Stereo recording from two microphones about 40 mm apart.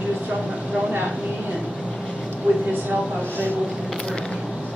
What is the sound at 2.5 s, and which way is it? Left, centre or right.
Speech, right.